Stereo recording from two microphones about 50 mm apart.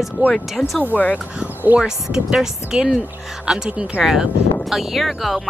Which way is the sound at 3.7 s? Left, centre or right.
Right.